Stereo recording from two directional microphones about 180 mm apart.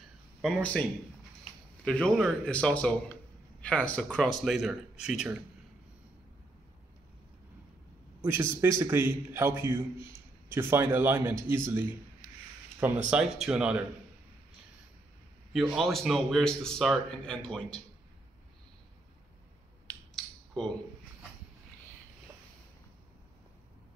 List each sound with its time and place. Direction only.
0.4 s a man's voice: 5° left (ahead or behind)
1.9 s a man's voice: 5° left (ahead or behind)
8.2 s a man's voice: 15° right (ahead or behind)
13.1 s a man's voice: 5° right (ahead or behind)
15.5 s a man's voice: centre (ahead or behind)
20.2 s a sound: 5° left (ahead or behind)